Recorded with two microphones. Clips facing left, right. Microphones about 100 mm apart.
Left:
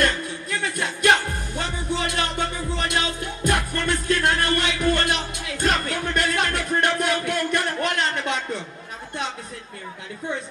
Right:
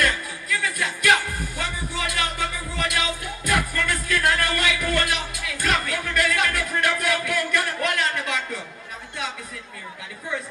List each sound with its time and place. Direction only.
0.0 s music: 25° left (ahead or behind)